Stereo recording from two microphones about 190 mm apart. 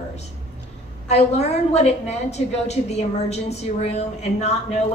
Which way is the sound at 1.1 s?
35° left (ahead or behind).